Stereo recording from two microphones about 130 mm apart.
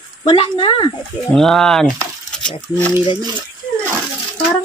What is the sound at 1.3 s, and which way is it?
Speech, 5° left (ahead or behind).